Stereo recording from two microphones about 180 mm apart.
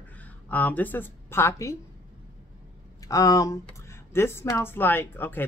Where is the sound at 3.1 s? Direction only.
20° left (ahead or behind).